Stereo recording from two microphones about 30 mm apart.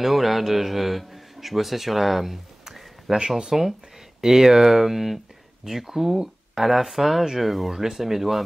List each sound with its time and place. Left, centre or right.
0.0 s a man's voice: centre